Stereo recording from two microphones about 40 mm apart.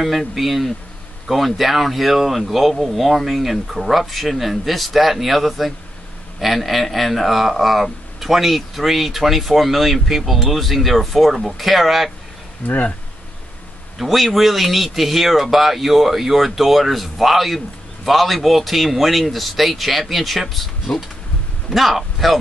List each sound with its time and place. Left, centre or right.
0.0 s speech: centre
12.6 s speech: left
13.9 s a man's voice: centre